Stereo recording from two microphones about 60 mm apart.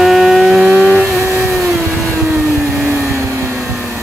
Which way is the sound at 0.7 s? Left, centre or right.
Right.